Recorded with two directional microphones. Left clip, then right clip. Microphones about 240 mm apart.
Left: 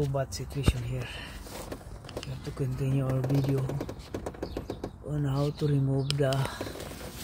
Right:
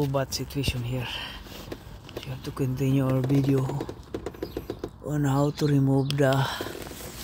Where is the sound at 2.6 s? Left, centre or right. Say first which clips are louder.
Right 7 dB; right.